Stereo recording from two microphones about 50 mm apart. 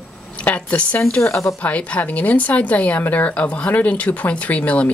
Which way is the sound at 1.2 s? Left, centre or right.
Left.